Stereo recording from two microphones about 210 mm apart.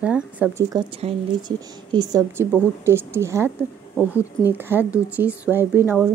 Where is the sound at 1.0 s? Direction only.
30° right (ahead or behind).